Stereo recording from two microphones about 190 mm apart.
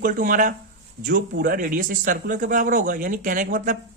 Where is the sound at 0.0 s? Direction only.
45° right (ahead or behind).